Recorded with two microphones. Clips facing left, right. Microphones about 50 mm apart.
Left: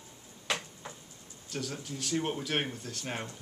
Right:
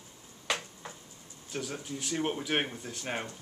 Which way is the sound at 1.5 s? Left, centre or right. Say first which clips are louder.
Right 1 dB; centre.